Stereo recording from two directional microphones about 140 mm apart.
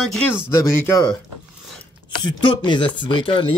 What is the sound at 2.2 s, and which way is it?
Speech, 35° left (ahead or behind).